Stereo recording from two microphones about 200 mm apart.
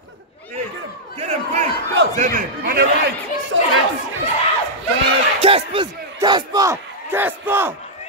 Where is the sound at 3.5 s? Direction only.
70° right (ahead or behind).